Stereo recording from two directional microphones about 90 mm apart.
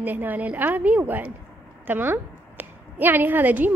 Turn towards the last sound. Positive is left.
turn(degrees=-20)  # may be behind; listen again after turning